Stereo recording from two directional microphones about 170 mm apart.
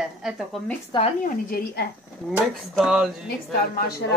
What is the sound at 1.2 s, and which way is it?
Speech, 60° left (ahead or behind).